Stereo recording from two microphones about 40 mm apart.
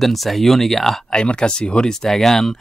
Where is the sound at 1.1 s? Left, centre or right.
Left.